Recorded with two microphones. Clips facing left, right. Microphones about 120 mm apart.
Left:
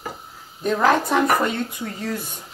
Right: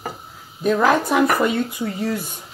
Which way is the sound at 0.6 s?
5° right (ahead or behind).